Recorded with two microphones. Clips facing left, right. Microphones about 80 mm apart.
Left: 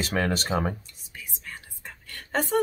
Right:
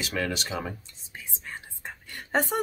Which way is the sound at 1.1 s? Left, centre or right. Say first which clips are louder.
Right 1 dB; right.